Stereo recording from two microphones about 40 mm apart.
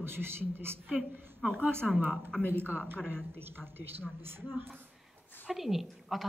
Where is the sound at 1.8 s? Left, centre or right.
Centre.